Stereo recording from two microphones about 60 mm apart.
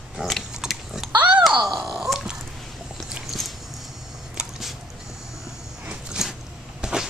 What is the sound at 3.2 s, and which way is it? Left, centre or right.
Dog, centre.